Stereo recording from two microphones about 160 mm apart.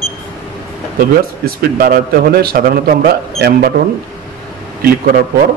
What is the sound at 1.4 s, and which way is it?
A man's voice, 65° right (ahead or behind).